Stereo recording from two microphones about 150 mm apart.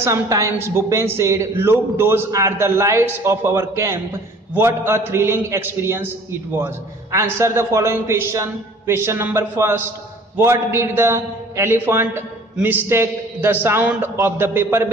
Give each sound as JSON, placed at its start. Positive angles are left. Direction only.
{"t": 0.0, "sound": "a woman's voice", "side_deg": -20}